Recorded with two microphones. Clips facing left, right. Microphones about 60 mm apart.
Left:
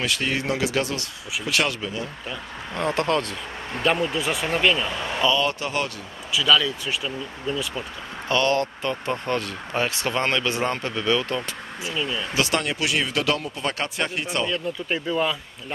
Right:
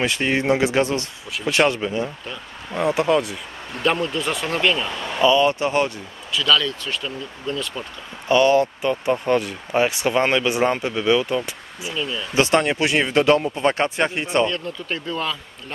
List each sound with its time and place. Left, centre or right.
0.0 s speech: right
2.7 s speech: centre
3.8 s speech: centre
5.2 s speech: right
6.3 s speech: centre
8.3 s speech: centre
11.9 s speech: centre
12.4 s speech: right
14.4 s speech: centre